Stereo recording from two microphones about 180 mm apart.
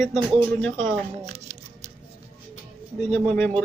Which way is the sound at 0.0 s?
Centre (ahead or behind).